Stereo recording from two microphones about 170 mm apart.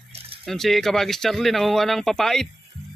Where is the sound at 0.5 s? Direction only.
Centre (ahead or behind).